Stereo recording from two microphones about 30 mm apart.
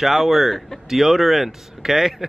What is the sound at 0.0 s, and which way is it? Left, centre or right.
A man's voice, centre.